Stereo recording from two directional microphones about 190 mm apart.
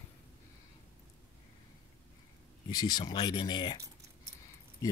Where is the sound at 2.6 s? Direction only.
20° left (ahead or behind).